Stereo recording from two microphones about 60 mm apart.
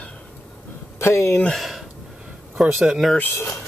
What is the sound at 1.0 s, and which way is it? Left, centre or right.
Speech, left.